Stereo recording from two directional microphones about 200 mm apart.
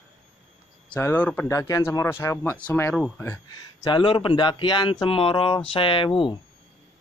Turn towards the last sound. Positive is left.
turn(degrees=25)  # may be behind; listen again after turning